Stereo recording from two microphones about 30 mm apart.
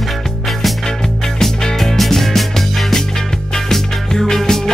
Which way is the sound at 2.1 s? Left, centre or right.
Centre.